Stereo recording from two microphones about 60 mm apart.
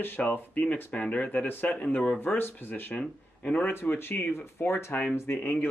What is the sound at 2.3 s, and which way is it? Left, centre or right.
Speech, left.